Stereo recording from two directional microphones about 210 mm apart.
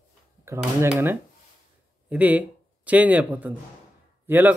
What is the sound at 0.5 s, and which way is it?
Speech, 10° right (ahead or behind).